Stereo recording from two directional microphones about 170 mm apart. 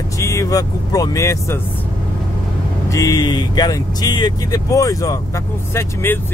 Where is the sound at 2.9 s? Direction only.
20° left (ahead or behind).